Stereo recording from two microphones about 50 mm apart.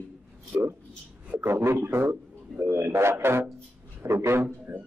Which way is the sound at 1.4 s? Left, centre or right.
Right.